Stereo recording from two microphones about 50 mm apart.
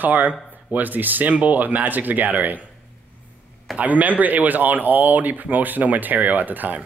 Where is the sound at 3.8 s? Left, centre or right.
Right.